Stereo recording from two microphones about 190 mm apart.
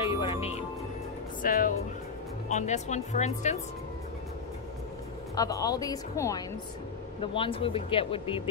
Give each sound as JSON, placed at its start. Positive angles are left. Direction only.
{"t": 0.2, "sound": "music", "side_deg": 30}
{"t": 1.4, "sound": "speech", "side_deg": 45}
{"t": 5.3, "sound": "speech", "side_deg": 20}
{"t": 7.2, "sound": "speech", "side_deg": 30}